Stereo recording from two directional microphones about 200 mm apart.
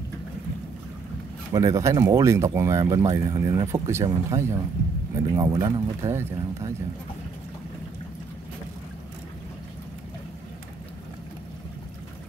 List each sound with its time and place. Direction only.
1.5 s speech: 15° right (ahead or behind)